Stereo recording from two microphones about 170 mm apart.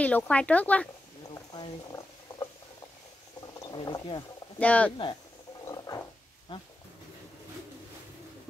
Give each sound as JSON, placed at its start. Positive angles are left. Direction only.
{"t": 0.0, "sound": "speech", "side_deg": 10}
{"t": 1.3, "sound": "a sound", "side_deg": 20}
{"t": 3.5, "sound": "speech", "side_deg": 25}
{"t": 4.6, "sound": "speech", "side_deg": 10}
{"t": 5.7, "sound": "a sound", "side_deg": 20}
{"t": 6.5, "sound": "speech", "side_deg": 30}